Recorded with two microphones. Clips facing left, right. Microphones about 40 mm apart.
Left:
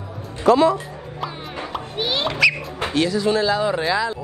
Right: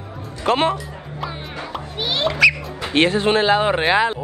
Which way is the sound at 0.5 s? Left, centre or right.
Right.